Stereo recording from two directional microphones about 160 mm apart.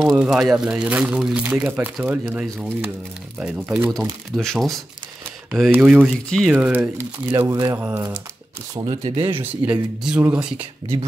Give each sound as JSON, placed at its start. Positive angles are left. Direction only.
{"t": 0.2, "sound": "speech", "side_deg": -5}
{"t": 4.4, "sound": "speech", "side_deg": 0}
{"t": 9.3, "sound": "speech", "side_deg": -10}